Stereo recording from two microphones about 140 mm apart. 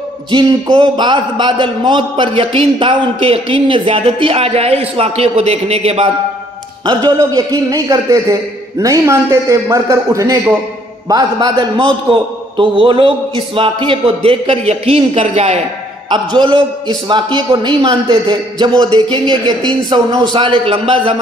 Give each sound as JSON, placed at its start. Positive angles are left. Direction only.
{"t": 0.3, "sound": "a man's voice", "side_deg": -35}
{"t": 6.9, "sound": "a man's voice", "side_deg": -30}
{"t": 16.1, "sound": "a man's voice", "side_deg": -35}